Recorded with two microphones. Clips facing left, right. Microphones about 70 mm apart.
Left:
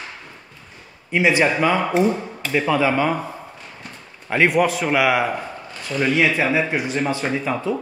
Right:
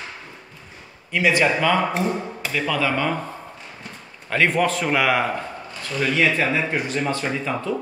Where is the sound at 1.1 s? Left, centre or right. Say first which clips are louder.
Left 2 dB; left.